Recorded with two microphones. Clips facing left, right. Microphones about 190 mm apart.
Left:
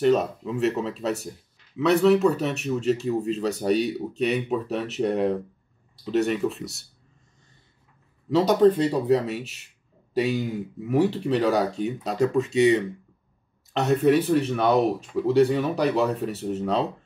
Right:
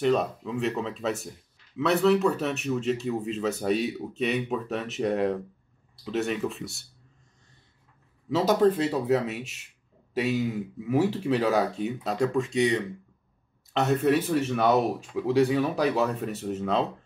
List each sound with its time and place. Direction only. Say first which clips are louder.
0.0 s speech: left 3 dB; centre (ahead or behind)
8.3 s speech: left 4 dB; 5° right (ahead or behind)
9.4 s speech: left 1 dB; 35° left (ahead or behind)
10.1 s speech: left 2 dB; centre (ahead or behind)